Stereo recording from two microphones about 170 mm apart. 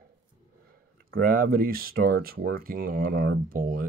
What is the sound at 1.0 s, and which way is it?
Speech, 55° right (ahead or behind).